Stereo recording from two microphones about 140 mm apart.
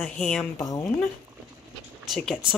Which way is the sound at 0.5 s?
25° left (ahead or behind).